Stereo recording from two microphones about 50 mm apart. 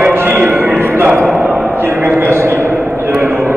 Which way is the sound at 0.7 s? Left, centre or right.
Right.